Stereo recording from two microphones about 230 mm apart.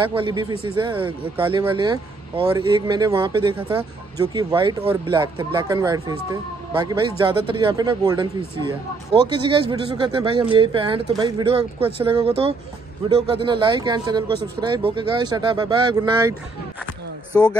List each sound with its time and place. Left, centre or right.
0.1 s a man's voice: right
17.3 s speech: centre